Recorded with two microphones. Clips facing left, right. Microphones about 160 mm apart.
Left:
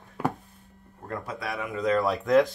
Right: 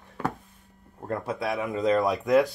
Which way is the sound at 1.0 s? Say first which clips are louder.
Right 5 dB; 25° right (ahead or behind).